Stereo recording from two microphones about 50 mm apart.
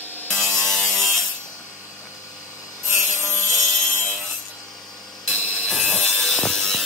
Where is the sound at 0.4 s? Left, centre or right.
Centre.